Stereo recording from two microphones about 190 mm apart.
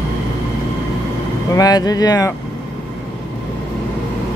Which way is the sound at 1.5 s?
20° left (ahead or behind).